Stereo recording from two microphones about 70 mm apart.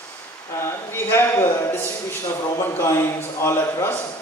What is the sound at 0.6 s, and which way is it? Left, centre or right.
A man's voice, left.